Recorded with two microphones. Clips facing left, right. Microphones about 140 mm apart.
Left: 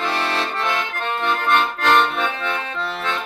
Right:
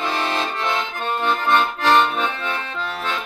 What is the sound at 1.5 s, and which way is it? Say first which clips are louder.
Accordion: even; 15° right (ahead or behind).